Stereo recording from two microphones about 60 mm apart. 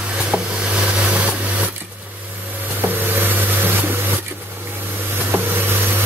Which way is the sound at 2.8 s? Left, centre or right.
Right.